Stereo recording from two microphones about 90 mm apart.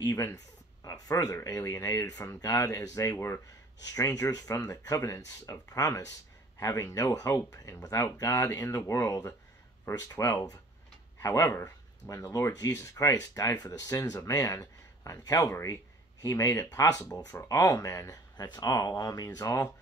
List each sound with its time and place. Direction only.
0.0 s speech: 40° left (ahead or behind)
11.4 s speech: 20° left (ahead or behind)
12.1 s speech: 35° left (ahead or behind)
19.2 s speech: 35° left (ahead or behind)